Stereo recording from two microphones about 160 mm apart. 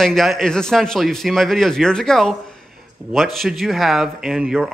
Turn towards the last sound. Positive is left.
turn(degrees=-5)  # may be behind; listen again after turning